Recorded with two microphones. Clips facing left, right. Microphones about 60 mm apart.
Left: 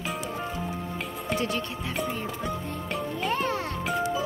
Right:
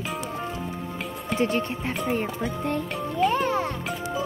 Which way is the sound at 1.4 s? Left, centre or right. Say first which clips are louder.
Right 8 dB; right.